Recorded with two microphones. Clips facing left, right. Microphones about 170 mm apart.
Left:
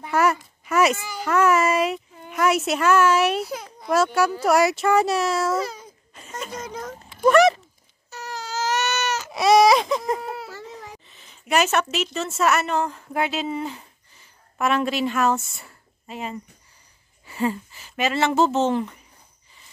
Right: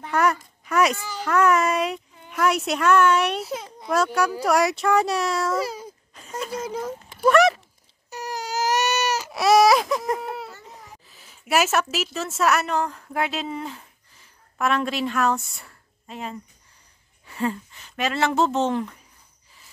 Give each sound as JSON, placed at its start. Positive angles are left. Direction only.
{"t": 0.0, "sound": "a child's voice", "side_deg": 5}
{"t": 6.1, "sound": "a sound", "side_deg": 0}
{"t": 8.1, "sound": "baby cry", "side_deg": -15}
{"t": 8.7, "sound": "baby cry", "side_deg": -35}
{"t": 9.1, "sound": "baby cry", "side_deg": -5}
{"t": 11.1, "sound": "a sound", "side_deg": -5}
{"t": 11.9, "sound": "a child's voice", "side_deg": 0}